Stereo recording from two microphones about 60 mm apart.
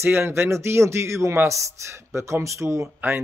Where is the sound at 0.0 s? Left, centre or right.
Right.